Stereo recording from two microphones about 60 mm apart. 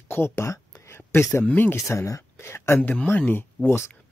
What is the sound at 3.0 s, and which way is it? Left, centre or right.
Speech, left.